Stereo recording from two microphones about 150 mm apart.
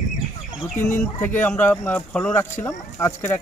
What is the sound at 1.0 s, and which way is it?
Speech, 15° left (ahead or behind).